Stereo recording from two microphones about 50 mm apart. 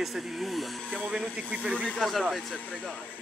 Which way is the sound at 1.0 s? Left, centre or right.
Centre.